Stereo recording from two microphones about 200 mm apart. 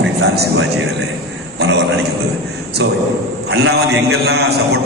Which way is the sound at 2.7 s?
55° right (ahead or behind).